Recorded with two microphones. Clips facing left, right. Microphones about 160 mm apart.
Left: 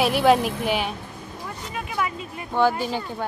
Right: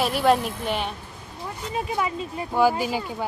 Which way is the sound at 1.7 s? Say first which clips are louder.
Right 2 dB; 30° right (ahead or behind).